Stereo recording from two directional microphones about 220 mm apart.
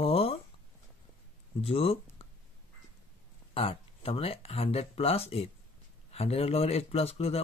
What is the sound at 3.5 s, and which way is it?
Speech, 25° left (ahead or behind).